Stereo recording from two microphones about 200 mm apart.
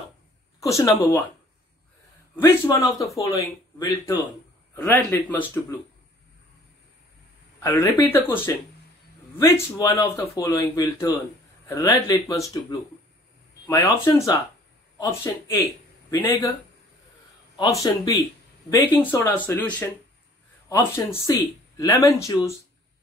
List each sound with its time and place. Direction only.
0.6 s speech: 15° left (ahead or behind)
2.3 s speech: 10° left (ahead or behind)
2.9 s speech: centre (ahead or behind)
3.2 s speech: 15° left (ahead or behind)
7.6 s speech: 15° left (ahead or behind)
13.7 s speech: 15° left (ahead or behind)
17.6 s speech: 20° left (ahead or behind)